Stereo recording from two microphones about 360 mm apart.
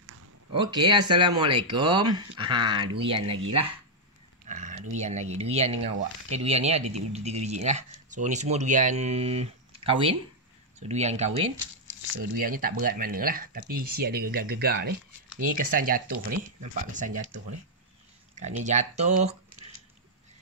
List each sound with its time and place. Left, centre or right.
0.5 s speech: centre
4.5 s a sound: right
4.9 s speech: centre
18.4 s speech: centre